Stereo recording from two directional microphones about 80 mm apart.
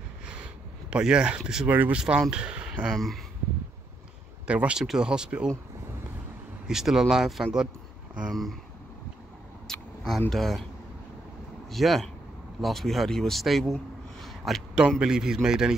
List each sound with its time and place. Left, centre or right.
0.3 s a sound: centre
1.7 s speech: right
2.0 s a man's voice: centre
2.9 s speech: centre
4.5 s a man's voice: centre
6.7 s speech: centre
9.7 s a sound: centre
10.3 s speech: centre
11.7 s speech: centre
14.2 s a sound: centre
15.0 s a man's voice: centre